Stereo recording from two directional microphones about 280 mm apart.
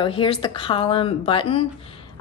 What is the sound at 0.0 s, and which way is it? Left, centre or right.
A woman's voice, centre.